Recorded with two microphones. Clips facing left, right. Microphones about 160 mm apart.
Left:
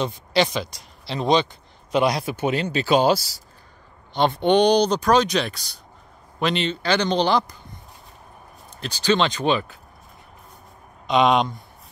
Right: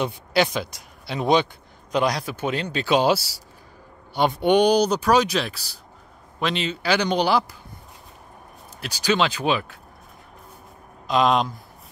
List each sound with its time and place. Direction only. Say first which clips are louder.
0.3 s speech: left 1 dB; 5° right (ahead or behind)
1.9 s speech: left 2 dB; 5° left (ahead or behind)
3.2 s speech: right 1 dB; 85° right
4.1 s speech: even; 10° right (ahead or behind)
8.7 s speech: left 1 dB; 10° right (ahead or behind)
11.1 s speech: left 2 dB; centre (ahead or behind)